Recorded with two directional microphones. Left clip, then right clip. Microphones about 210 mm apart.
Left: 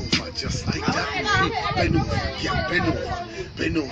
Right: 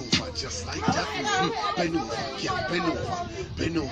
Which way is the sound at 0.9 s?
50° left (ahead or behind).